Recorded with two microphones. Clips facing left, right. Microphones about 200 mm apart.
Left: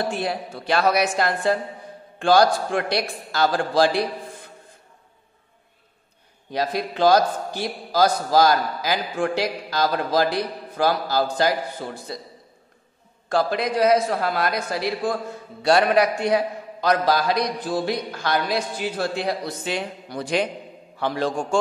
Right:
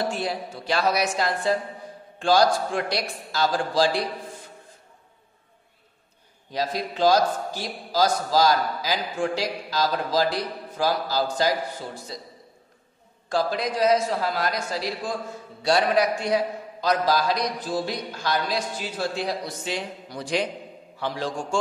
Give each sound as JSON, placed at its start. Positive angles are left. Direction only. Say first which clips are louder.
{"t": 0.1, "sound": "a man's voice", "louder": "left 2 dB", "side_deg": 60}
{"t": 6.5, "sound": "a man's voice", "louder": "left 3 dB", "side_deg": 60}
{"t": 13.3, "sound": "a man's voice", "louder": "left 3 dB", "side_deg": 60}